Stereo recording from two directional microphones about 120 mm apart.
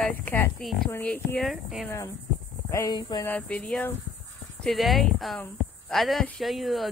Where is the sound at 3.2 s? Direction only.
15° left (ahead or behind).